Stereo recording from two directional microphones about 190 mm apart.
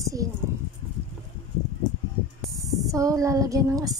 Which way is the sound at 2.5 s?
20° right (ahead or behind).